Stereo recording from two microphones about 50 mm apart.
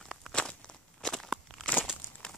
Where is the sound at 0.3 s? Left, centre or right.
Centre.